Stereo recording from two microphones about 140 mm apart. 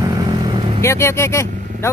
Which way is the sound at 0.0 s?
30° right (ahead or behind).